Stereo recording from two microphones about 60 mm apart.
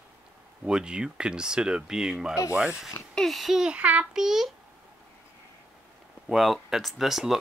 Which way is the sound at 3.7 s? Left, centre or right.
Right.